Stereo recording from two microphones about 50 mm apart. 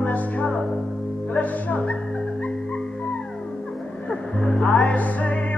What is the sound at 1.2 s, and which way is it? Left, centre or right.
Speech, left.